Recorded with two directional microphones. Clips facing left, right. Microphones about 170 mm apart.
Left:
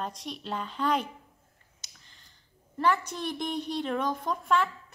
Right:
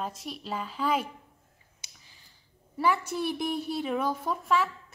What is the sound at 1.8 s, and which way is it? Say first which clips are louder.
Finger snapping: even; 10° right (ahead or behind).